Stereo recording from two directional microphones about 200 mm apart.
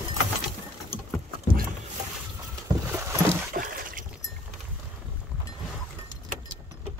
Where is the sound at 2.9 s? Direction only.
10° right (ahead or behind).